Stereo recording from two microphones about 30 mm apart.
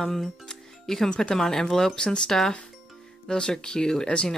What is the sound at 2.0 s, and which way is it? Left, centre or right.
Speech, left.